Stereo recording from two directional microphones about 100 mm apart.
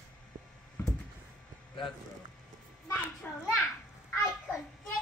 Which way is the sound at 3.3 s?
15° left (ahead or behind).